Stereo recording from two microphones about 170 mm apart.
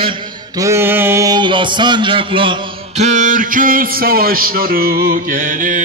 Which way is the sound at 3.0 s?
45° right (ahead or behind).